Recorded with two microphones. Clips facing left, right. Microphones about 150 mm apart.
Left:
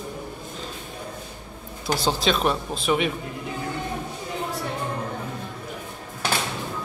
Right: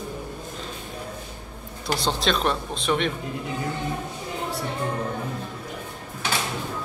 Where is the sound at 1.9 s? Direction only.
Centre (ahead or behind).